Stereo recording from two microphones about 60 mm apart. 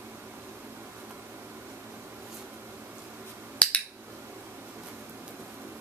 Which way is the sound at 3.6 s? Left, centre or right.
Left.